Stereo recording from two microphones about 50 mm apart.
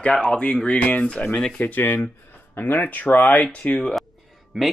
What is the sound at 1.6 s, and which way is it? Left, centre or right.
Speech, left.